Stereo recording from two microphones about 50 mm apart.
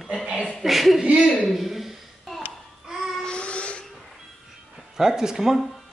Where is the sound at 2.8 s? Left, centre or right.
Centre.